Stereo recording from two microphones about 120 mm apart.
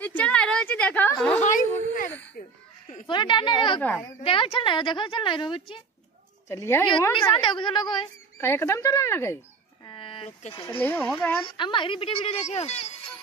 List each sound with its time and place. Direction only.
0.0 s a sound: 10° left (ahead or behind)
1.4 s speech: 90° left
3.1 s a woman's voice: 40° left (ahead or behind)
6.5 s speech: 25° left (ahead or behind)
6.9 s a woman's voice: 40° left (ahead or behind)
8.4 s speech: 20° left (ahead or behind)
9.8 s a sound: 45° left (ahead or behind)
10.8 s speech: 15° left (ahead or behind)
11.5 s a woman's voice: 40° left (ahead or behind); by 12.8 s 65° left (ahead or behind)